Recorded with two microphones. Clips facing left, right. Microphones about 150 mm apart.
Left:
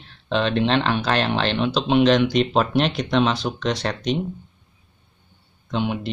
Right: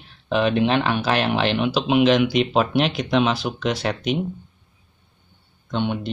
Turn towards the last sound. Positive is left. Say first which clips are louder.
# even
turn(degrees=0)  # may be behind; listen again after turning